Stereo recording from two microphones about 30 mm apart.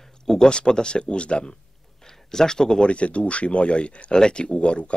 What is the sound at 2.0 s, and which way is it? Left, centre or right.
Speech, centre.